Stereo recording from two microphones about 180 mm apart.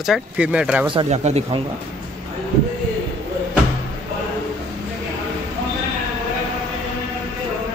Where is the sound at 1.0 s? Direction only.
40° right (ahead or behind).